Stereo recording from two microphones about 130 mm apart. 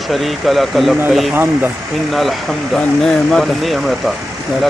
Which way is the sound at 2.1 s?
Centre (ahead or behind).